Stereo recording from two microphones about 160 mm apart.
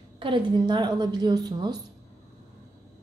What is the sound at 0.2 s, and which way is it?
A woman's voice, 30° right (ahead or behind).